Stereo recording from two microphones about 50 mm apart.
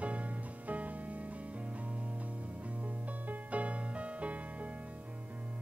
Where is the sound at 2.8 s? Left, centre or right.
Right.